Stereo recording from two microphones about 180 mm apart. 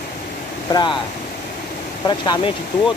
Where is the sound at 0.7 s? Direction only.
25° left (ahead or behind).